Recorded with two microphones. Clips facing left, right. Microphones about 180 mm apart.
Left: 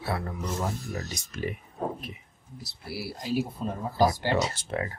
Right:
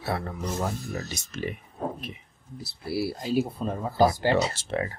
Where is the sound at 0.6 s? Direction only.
30° right (ahead or behind).